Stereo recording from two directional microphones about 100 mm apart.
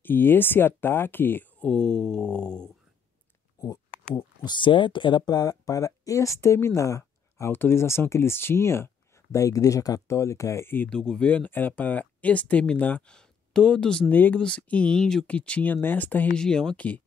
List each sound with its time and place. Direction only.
0.0 s speech: 20° left (ahead or behind)
3.6 s a sound: 35° left (ahead or behind)
4.4 s speech: 50° left (ahead or behind); by 10.7 s 30° left (ahead or behind)
10.9 s speech: 10° left (ahead or behind)